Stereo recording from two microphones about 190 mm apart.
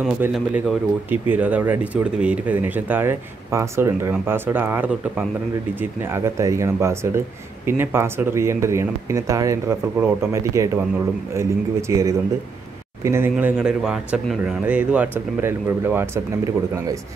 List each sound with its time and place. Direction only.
0.2 s speech: 5° right (ahead or behind)
11.9 s speech: 15° right (ahead or behind)